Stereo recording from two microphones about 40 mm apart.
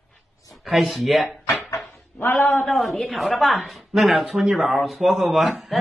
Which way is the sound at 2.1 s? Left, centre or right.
Left.